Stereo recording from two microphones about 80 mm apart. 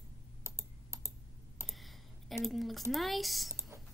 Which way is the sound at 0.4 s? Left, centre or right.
Right.